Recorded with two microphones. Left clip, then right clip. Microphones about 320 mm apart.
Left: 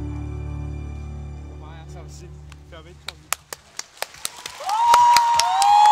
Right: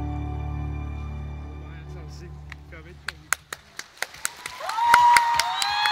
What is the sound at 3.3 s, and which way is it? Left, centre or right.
Clapping, centre.